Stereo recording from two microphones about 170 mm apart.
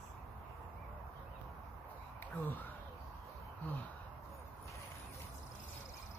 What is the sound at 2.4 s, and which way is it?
Speech, 10° left (ahead or behind).